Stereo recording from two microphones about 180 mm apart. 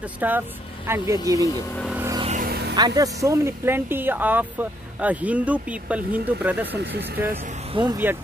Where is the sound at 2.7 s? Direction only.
20° right (ahead or behind).